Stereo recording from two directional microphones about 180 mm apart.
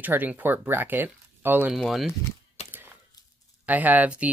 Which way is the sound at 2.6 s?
35° left (ahead or behind).